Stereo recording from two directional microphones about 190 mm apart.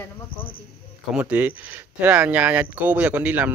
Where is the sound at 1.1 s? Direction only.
10° right (ahead or behind).